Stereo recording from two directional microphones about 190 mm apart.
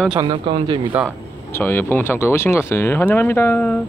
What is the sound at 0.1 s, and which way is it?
Speech, 25° right (ahead or behind).